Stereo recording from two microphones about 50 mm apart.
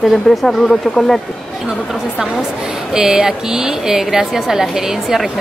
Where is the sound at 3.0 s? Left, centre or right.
Centre.